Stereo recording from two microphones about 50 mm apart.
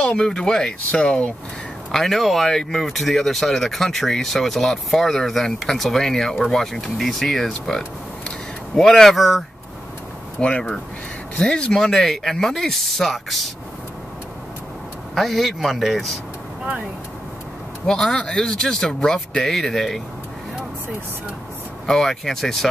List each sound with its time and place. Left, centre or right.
0.0 s speech: centre
1.9 s speech: centre
8.7 s speech: centre
10.4 s speech: centre
11.7 s speech: centre
15.1 s speech: centre
17.8 s speech: centre
21.8 s speech: centre